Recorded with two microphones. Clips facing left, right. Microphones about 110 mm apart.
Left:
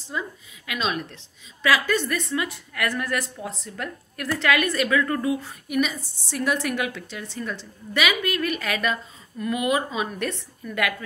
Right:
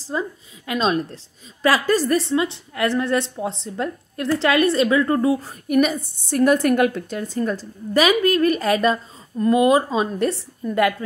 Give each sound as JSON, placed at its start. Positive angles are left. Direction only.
{"t": 0.1, "sound": "a woman's voice", "side_deg": -35}